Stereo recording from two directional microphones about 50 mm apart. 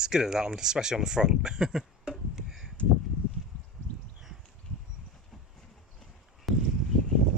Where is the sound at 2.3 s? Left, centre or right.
Centre.